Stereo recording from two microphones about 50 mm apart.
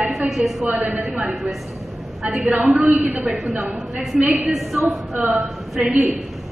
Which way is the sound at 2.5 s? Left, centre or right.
Centre.